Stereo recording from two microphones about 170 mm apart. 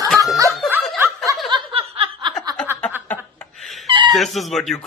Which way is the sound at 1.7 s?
30° right (ahead or behind).